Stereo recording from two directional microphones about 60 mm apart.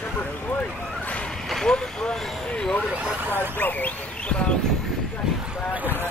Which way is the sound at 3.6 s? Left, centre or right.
Left.